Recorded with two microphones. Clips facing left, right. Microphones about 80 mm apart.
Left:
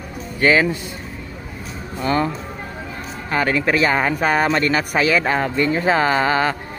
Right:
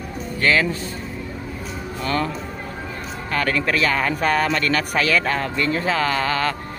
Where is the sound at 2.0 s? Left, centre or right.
Left.